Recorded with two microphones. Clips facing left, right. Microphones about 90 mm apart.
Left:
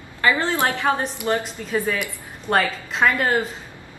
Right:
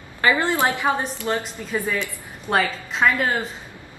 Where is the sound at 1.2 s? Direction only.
15° left (ahead or behind).